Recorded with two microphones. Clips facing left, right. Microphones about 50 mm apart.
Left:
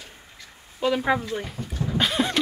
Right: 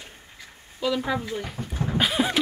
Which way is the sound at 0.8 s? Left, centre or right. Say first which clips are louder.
Left 3 dB; left.